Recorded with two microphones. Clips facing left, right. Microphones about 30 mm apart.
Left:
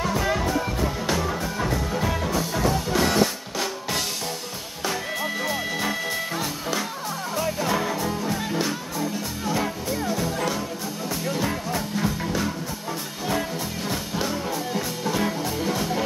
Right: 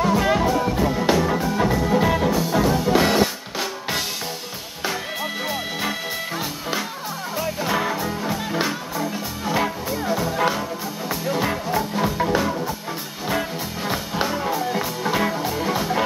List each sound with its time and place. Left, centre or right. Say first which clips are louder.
0.0 s music: right 5 dB; centre
10.0 s music: right 6 dB; centre